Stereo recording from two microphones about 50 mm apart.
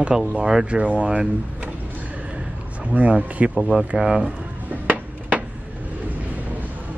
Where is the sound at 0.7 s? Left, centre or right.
Right.